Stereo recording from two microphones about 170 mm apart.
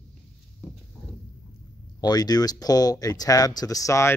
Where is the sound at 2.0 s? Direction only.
25° left (ahead or behind).